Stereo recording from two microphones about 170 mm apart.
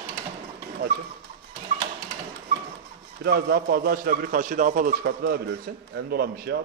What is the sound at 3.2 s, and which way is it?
A man's voice, 65° right (ahead or behind).